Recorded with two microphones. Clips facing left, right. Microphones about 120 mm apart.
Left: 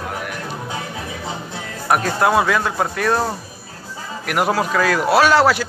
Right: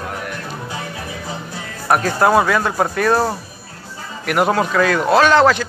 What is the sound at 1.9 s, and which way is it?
Speech, centre (ahead or behind).